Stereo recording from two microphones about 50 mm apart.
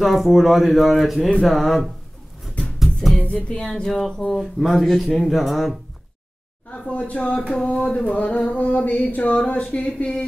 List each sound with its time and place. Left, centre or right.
0.0 s speech: centre
2.6 s music: centre
3.4 s music: centre
3.9 s speech: centre
6.9 s a sound: left